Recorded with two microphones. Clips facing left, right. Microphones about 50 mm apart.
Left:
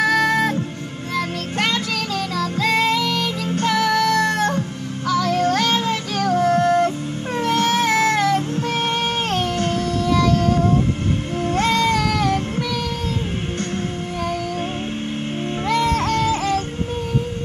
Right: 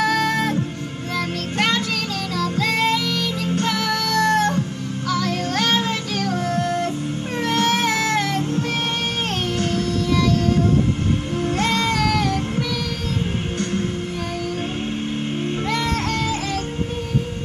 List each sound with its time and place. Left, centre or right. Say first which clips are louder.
0.0 s music: left 2 dB; centre
2.3 s child singing: even; centre
2.7 s music: left 4 dB; left
3.6 s music: left 9 dB; centre
7.6 s a sound: even; centre
11.6 s a sound: left 3 dB; centre
15.7 s music: left 6 dB; centre